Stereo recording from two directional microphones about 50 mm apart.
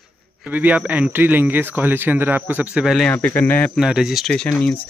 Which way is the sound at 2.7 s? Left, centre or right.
Centre.